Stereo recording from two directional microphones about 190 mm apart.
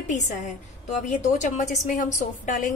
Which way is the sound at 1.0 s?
40° left (ahead or behind).